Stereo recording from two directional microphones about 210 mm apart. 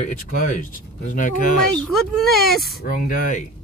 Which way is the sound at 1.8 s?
Centre (ahead or behind).